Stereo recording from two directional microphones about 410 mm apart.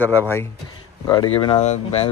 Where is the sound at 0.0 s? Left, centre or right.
Centre.